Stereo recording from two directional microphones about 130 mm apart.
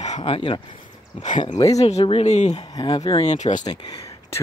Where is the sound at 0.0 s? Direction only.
55° left (ahead or behind).